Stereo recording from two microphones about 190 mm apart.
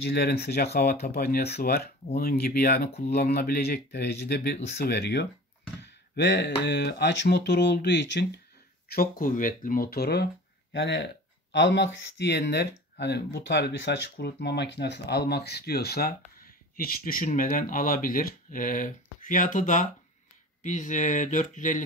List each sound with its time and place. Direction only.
0.0 s speech: 60° left (ahead or behind)
8.8 s speech: 55° left (ahead or behind)